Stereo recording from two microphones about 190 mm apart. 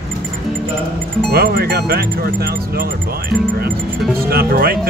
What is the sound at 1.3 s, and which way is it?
Speech, 50° right (ahead or behind).